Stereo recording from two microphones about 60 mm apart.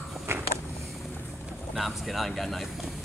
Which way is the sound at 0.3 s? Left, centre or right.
Right.